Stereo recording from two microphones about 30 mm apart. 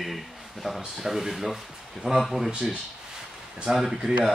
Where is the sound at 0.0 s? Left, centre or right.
Centre.